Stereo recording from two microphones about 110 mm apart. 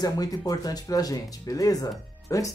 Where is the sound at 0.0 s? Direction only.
35° left (ahead or behind).